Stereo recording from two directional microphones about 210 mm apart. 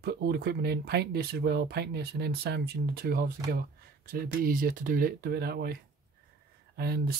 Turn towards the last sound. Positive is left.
turn(degrees=-50)  # may be behind; listen again after turning